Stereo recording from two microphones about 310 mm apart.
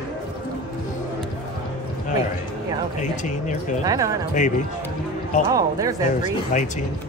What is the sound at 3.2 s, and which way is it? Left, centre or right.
Speech, left.